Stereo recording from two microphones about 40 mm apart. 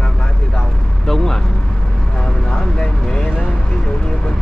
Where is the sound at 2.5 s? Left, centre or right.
Centre.